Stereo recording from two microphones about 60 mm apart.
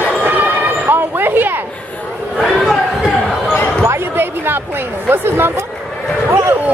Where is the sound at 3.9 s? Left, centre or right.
Right.